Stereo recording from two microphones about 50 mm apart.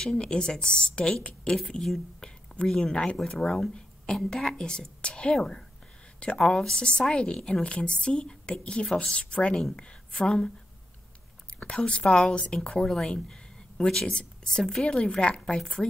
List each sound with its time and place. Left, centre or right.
0.0 s a woman's voice: centre
2.1 s a sound: centre
3.3 s a woman's voice: centre
11.6 s a woman's voice: left
15.6 s a woman's voice: centre